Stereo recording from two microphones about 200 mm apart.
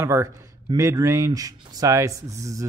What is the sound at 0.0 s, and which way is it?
Speech, 15° right (ahead or behind).